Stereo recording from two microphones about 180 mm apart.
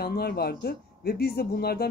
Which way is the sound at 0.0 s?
60° left (ahead or behind).